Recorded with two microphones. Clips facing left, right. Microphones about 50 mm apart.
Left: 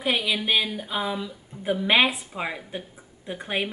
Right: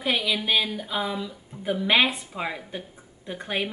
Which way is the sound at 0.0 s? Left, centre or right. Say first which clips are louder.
Even; centre.